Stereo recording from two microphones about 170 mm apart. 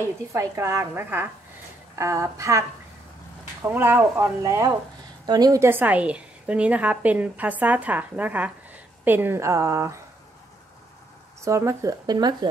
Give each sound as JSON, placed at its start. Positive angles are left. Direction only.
{"t": 0.3, "sound": "a woman's voice", "side_deg": -15}
{"t": 3.6, "sound": "a woman's voice", "side_deg": -15}
{"t": 11.4, "sound": "speech", "side_deg": -20}